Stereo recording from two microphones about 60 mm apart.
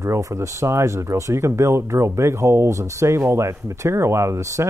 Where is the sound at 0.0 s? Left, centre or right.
Right.